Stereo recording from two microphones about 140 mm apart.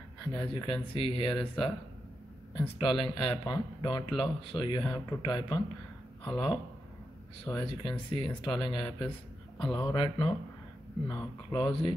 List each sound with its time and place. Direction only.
0.3 s speech: 35° left (ahead or behind)
2.8 s speech: 40° left (ahead or behind)